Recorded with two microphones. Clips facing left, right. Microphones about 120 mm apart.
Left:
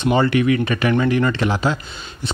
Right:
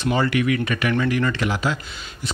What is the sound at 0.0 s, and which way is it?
A man's voice, 25° left (ahead or behind).